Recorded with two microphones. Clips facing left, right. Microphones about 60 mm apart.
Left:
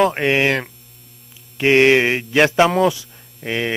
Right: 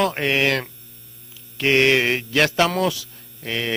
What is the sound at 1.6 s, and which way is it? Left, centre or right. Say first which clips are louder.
Speech: left 4 dB; centre.